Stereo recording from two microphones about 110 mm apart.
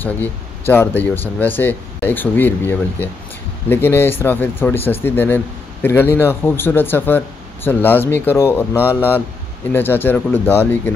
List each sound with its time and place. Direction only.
0.0 s speech: 15° left (ahead or behind)
9.7 s speech: 20° left (ahead or behind)